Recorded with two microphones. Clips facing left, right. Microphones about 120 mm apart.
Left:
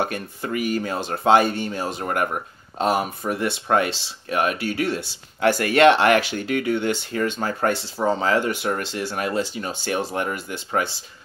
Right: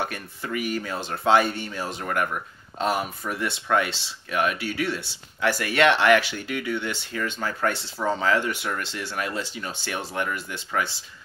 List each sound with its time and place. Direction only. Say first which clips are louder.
0.0 s speech: left 5 dB; 40° left (ahead or behind)